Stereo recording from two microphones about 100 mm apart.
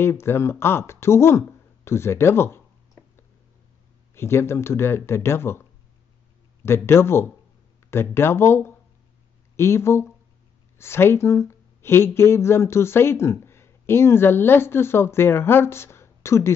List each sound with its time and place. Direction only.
0.0 s speech: 25° left (ahead or behind)
4.1 s speech: 25° left (ahead or behind)